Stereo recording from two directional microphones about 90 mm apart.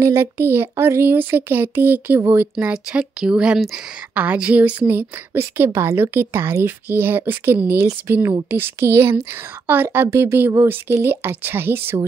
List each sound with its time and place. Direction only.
0.0 s a woman's voice: 30° right (ahead or behind); by 4.7 s 15° right (ahead or behind)
4.8 s a woman's voice: 25° right (ahead or behind)
10.0 s a woman's voice: 35° right (ahead or behind)